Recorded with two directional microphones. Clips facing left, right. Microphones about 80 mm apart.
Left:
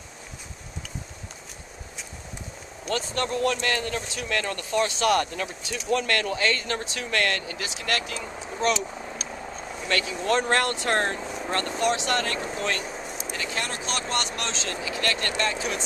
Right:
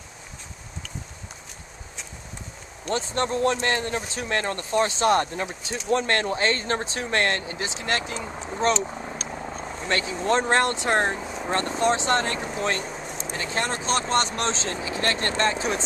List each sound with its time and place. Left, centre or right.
2.9 s speech: right
9.8 s speech: right
11.1 s vehicle: centre
11.4 s speech: right
12.8 s a sound: centre
13.3 s speech: right